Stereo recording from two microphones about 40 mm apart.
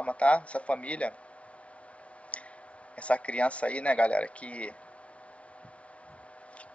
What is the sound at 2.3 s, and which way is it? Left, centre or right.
Tick, left.